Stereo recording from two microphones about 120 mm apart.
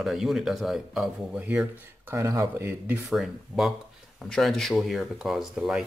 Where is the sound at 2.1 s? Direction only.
25° right (ahead or behind).